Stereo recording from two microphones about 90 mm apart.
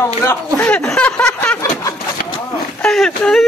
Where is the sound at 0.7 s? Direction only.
15° left (ahead or behind).